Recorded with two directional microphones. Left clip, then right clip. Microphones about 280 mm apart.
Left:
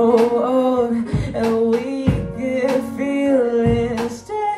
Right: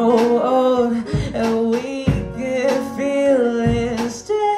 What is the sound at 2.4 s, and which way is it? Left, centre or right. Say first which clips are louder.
Music: right 1 dB; right.